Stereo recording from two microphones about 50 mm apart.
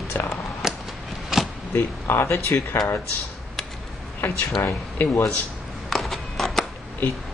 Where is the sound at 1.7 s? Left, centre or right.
Left.